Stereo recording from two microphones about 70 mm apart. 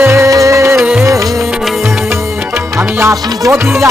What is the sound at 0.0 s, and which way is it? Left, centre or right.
Music, right.